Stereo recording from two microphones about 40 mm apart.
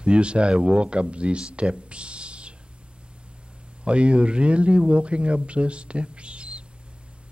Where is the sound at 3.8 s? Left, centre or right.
Right.